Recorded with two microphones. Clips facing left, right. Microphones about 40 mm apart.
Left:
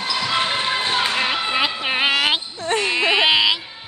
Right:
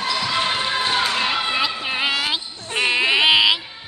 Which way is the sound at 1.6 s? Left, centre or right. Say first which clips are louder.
Left 2 dB; left.